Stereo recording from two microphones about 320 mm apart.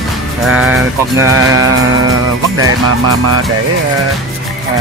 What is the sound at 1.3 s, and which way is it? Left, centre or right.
Music, right.